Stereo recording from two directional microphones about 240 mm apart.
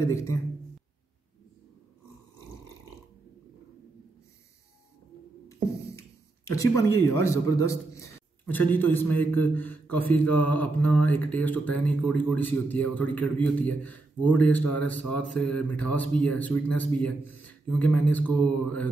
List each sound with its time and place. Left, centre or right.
0.1 s a man's voice: centre
6.4 s a man's voice: centre